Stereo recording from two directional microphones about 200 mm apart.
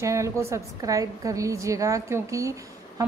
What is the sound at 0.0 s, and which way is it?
A woman's voice, 15° right (ahead or behind).